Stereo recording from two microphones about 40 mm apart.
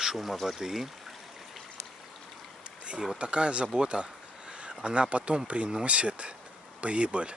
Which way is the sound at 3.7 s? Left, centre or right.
Right.